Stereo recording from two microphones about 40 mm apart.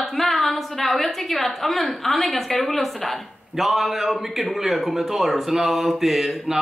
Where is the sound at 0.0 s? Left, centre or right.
Centre.